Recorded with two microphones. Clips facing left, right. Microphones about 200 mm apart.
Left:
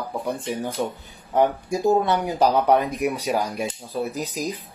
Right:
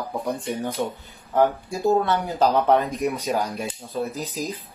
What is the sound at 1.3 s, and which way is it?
Speech, 15° left (ahead or behind).